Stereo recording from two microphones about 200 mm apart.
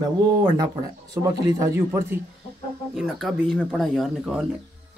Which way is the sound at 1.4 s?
15° right (ahead or behind).